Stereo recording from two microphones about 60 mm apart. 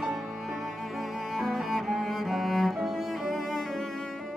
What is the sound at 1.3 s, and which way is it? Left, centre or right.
Cello, centre.